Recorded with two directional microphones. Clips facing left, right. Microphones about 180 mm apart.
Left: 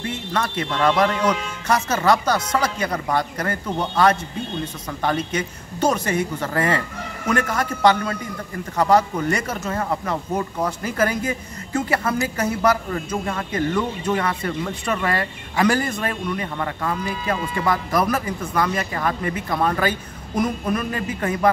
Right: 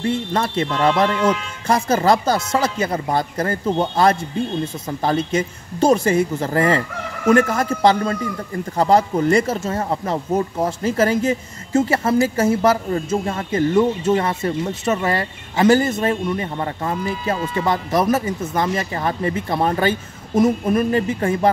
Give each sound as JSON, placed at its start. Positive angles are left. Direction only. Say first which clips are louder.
{"t": 0.0, "sound": "speech", "louder": "right 5 dB", "side_deg": -30}